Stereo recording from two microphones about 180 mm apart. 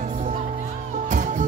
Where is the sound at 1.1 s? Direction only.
45° right (ahead or behind).